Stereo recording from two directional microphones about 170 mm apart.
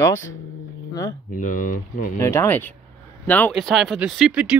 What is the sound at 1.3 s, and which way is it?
Speech, 55° left (ahead or behind).